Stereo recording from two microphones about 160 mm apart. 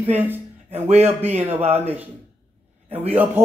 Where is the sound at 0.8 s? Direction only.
40° right (ahead or behind).